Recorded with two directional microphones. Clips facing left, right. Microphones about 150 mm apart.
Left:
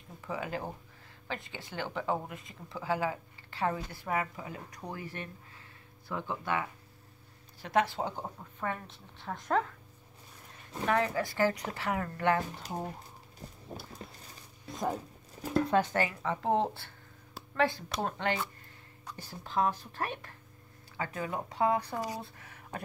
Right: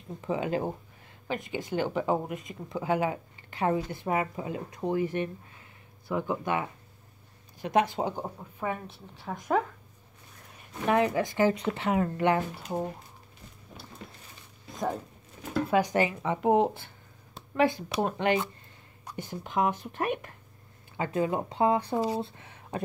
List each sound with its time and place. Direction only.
0.2 s speech: 20° right (ahead or behind)
10.9 s speech: 20° right (ahead or behind)
13.7 s a sound: 40° left (ahead or behind)
14.7 s zipper: centre (ahead or behind)
15.5 s speech: 10° right (ahead or behind)